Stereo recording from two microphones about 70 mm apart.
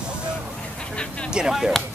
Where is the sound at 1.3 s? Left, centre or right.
Centre.